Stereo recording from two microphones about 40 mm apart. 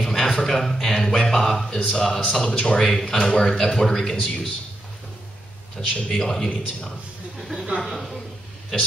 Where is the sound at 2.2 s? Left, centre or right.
Left.